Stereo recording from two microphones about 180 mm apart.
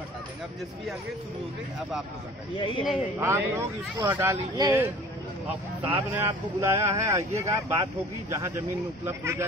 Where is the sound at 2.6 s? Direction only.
25° left (ahead or behind).